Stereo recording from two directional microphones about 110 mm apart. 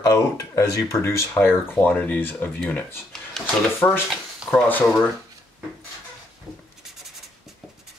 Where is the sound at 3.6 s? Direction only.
10° left (ahead or behind).